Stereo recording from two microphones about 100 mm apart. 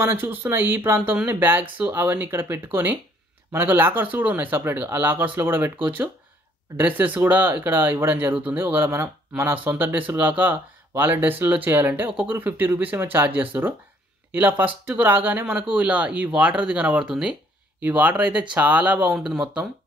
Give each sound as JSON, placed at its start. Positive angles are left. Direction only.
{"t": 0.0, "sound": "speech", "side_deg": -20}
{"t": 19.1, "sound": "speech", "side_deg": -5}